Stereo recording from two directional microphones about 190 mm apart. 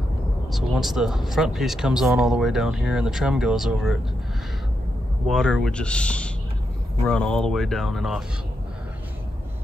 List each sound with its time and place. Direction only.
0.5 s speech: centre (ahead or behind)
5.3 s speech: centre (ahead or behind)